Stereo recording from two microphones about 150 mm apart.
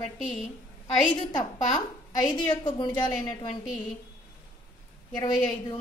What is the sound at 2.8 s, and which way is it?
Speech, 30° left (ahead or behind).